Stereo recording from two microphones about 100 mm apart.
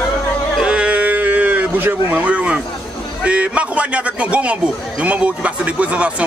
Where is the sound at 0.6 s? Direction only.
10° right (ahead or behind).